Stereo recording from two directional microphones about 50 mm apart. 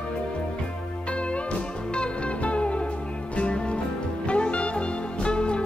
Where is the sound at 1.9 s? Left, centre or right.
Left.